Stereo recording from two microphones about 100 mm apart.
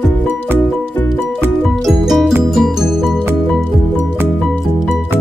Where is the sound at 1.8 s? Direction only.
5° right (ahead or behind).